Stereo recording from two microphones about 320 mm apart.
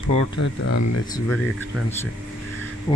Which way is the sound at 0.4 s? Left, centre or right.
Left.